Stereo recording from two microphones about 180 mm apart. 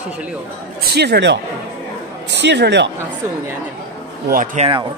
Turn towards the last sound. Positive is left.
turn(degrees=-30)  # may be behind; listen again after turning